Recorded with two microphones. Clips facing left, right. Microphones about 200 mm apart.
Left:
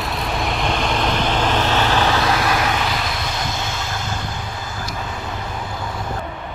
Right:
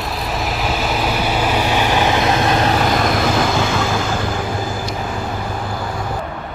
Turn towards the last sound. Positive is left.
turn(degrees=-55)  # may be behind; listen again after turning